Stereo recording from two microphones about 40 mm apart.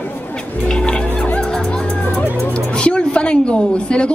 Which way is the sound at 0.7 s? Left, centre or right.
Left.